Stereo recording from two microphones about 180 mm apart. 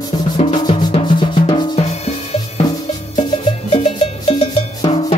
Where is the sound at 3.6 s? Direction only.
35° left (ahead or behind).